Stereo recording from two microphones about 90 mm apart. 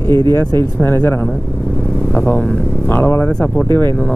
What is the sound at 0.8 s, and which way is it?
Speech, 20° left (ahead or behind).